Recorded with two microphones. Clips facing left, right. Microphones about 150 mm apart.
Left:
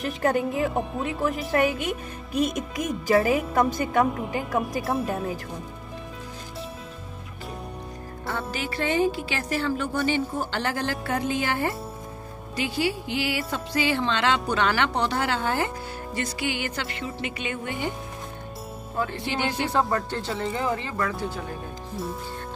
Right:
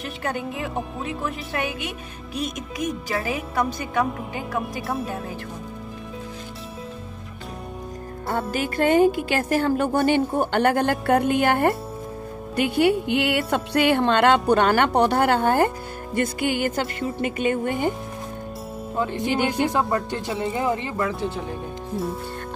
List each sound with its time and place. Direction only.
0.2 s speech: 40° left (ahead or behind)
3.3 s speech: 45° left (ahead or behind)
8.3 s speech: 45° right (ahead or behind)
18.9 s music: 20° right (ahead or behind)
19.5 s speech: 10° right (ahead or behind)